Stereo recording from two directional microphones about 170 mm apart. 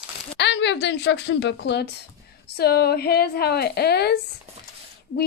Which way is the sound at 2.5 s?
70° left (ahead or behind).